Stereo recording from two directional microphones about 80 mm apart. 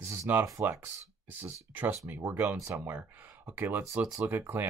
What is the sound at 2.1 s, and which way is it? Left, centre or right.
Speech, right.